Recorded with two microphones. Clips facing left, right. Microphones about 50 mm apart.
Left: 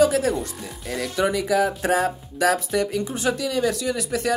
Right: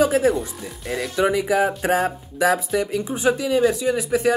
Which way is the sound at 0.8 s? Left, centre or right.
Centre.